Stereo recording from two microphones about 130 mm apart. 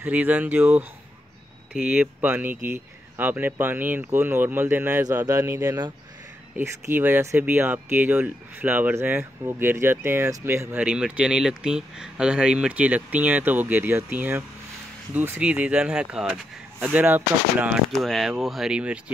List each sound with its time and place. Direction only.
0.0 s speech: 10° right (ahead or behind)
5.0 s speech: 25° right (ahead or behind); by 17.7 s 10° right (ahead or behind)
17.9 s speech: centre (ahead or behind)